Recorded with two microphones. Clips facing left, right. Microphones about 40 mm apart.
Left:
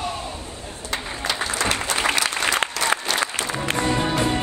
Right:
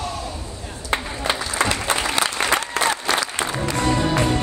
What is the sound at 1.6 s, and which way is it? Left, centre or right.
Applause, right.